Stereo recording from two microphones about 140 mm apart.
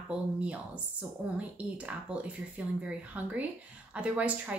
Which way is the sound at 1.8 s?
10° right (ahead or behind).